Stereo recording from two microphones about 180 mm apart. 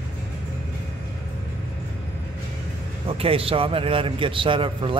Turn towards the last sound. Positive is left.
turn(degrees=-30)  # may be behind; listen again after turning